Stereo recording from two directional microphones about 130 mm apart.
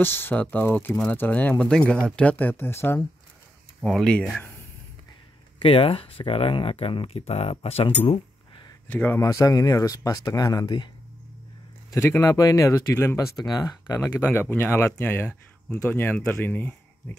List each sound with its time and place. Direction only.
0.0 s speech: 15° left (ahead or behind)
3.8 s speech: 5° left (ahead or behind)
5.6 s speech: 45° left (ahead or behind)
8.8 s speech: 15° left (ahead or behind)
9.2 s speech: 25° left (ahead or behind)
11.9 s speech: 25° left (ahead or behind)